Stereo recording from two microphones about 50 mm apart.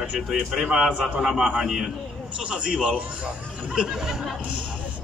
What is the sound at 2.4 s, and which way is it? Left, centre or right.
A man's voice, centre.